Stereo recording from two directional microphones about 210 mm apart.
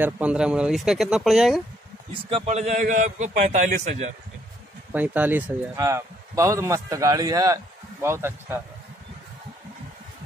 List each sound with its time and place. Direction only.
0.0 s speech: 5° right (ahead or behind)
2.2 s a man's voice: 30° right (ahead or behind)
4.9 s speech: 10° right (ahead or behind)